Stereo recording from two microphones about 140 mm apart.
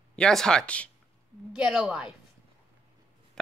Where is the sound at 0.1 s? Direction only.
5° left (ahead or behind).